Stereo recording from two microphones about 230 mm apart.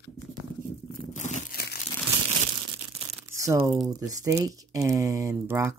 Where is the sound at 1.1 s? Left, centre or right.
Left.